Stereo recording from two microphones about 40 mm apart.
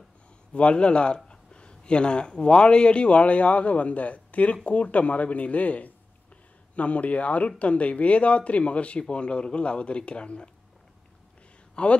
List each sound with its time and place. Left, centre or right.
0.5 s speech: left
11.7 s speech: left